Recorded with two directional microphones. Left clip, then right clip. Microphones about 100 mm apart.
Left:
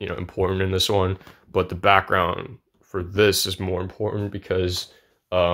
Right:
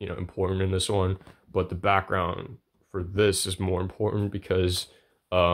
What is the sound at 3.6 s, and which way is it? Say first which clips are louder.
Speech: left 2 dB; 25° right (ahead or behind).